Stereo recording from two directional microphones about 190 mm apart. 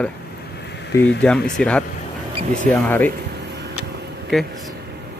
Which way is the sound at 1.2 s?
5° left (ahead or behind).